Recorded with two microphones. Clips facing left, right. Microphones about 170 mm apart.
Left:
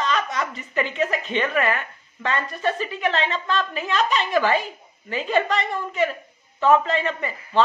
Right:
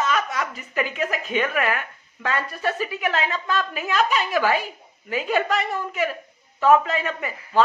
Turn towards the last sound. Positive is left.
turn(degrees=-5)  # may be behind; listen again after turning